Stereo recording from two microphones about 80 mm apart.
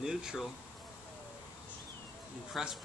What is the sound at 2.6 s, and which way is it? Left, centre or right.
Speech, centre.